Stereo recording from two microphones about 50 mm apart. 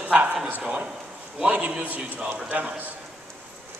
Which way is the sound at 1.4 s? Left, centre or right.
Right.